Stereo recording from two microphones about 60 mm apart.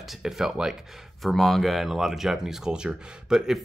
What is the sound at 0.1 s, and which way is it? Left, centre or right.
Speech, centre.